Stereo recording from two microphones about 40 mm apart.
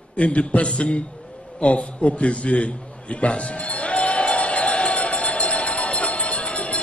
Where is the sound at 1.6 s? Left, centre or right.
Left.